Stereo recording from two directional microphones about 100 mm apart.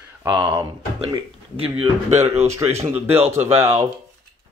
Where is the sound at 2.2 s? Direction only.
90° right.